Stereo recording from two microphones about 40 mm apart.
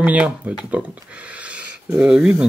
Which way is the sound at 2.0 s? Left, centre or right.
Right.